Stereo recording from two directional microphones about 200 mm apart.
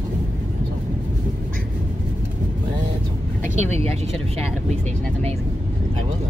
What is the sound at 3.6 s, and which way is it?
Speech, 30° right (ahead or behind).